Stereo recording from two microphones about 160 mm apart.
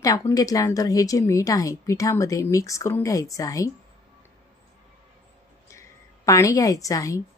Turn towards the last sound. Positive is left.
turn(degrees=20)  # may be behind; listen again after turning